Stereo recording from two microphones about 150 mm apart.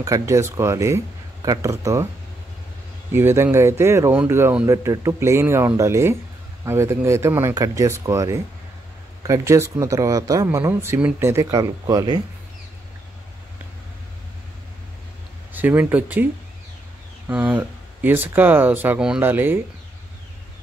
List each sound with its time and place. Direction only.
0.0 s speech: 20° right (ahead or behind)
3.1 s speech: 15° right (ahead or behind)
15.5 s speech: 10° right (ahead or behind)
17.3 s speech: 10° right (ahead or behind)